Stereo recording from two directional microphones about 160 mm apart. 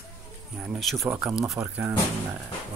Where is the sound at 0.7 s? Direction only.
Centre (ahead or behind).